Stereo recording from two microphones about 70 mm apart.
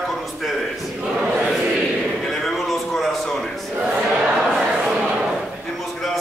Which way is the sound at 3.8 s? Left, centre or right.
Centre.